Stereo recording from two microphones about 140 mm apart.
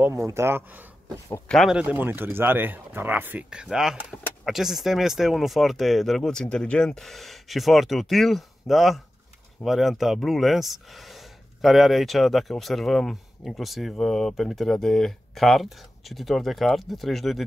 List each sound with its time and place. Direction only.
0.0 s a man's voice: 20° right (ahead or behind)
1.5 s a man's voice: centre (ahead or behind)